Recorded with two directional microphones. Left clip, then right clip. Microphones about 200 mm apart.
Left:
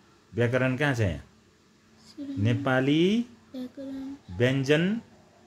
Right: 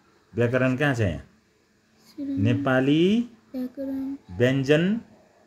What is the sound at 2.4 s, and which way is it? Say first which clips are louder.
Speech: right 3 dB; 5° left (ahead or behind).